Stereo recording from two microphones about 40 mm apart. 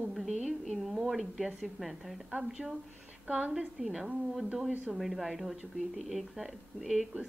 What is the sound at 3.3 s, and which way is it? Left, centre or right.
Speech, right.